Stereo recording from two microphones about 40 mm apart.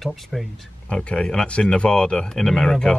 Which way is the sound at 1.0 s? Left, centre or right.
Left.